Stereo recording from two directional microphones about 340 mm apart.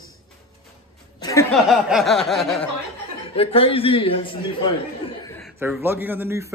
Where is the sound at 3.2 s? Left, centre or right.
Centre.